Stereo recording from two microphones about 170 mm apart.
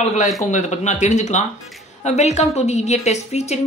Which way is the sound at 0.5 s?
45° left (ahead or behind).